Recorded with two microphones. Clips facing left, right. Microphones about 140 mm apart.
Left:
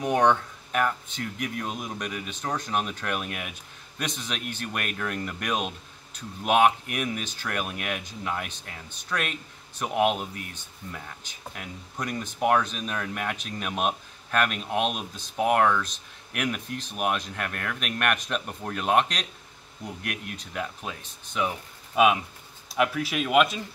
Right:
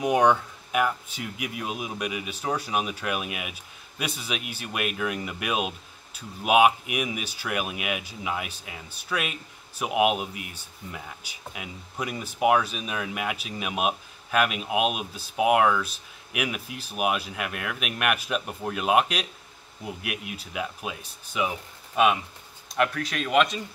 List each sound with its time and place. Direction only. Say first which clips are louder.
0.0 s speech: right 1 dB; 10° right (ahead or behind)